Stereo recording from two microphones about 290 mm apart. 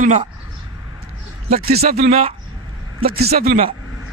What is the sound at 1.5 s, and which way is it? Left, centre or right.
Speech, right.